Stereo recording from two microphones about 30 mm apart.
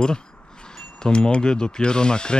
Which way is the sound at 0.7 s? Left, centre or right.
Left.